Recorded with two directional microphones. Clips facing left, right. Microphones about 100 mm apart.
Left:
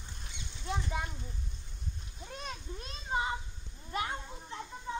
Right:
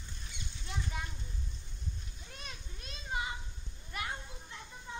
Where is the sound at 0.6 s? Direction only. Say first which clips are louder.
Left 6 dB; 35° left (ahead or behind).